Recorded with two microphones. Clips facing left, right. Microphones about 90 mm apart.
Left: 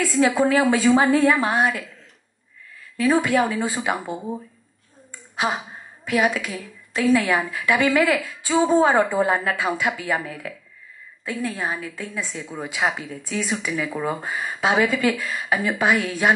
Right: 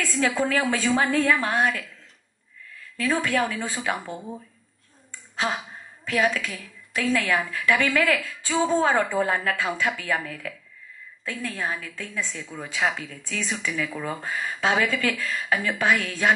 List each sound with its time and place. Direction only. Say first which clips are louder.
0.0 s a woman's voice: left 5 dB; 15° left (ahead or behind)
3.0 s a woman's voice: left 5 dB; 15° left (ahead or behind)
5.3 s a woman's voice: left 3 dB; 15° left (ahead or behind)